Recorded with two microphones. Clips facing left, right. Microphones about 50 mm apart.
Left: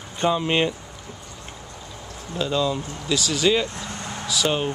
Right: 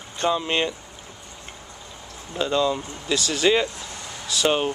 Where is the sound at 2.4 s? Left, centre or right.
Centre.